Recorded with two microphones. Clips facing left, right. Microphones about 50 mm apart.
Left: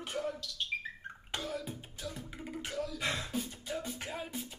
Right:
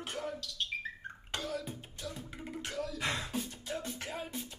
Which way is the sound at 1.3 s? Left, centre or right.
Centre.